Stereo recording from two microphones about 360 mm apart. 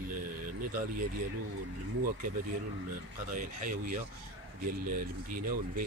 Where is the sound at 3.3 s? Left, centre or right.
Right.